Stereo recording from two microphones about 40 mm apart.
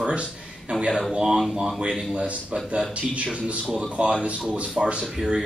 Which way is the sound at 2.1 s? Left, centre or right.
Right.